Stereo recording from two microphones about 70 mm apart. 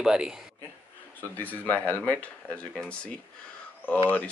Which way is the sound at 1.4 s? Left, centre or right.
Left.